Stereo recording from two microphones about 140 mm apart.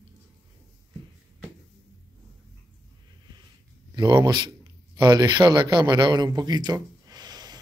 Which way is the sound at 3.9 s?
30° right (ahead or behind).